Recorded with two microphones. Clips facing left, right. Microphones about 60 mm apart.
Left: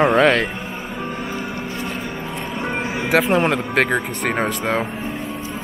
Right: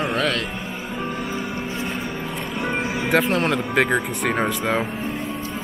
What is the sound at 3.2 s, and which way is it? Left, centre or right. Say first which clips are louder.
Speech: left 3 dB; centre.